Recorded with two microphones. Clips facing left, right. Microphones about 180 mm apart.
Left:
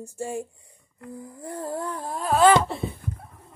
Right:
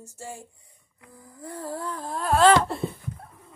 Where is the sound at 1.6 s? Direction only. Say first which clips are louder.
Left 2 dB; 30° left (ahead or behind).